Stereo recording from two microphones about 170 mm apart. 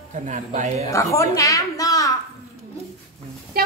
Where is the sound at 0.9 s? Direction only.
20° left (ahead or behind).